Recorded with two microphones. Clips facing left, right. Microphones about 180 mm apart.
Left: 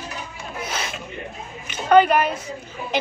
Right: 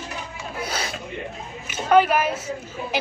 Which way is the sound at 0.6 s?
30° right (ahead or behind).